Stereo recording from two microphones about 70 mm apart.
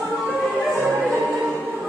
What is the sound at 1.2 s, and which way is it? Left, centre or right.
Music, centre.